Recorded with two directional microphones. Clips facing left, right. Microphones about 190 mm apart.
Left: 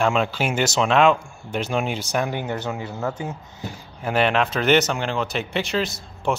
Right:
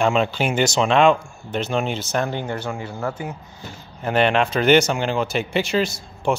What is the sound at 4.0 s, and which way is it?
A man's voice, 5° left (ahead or behind).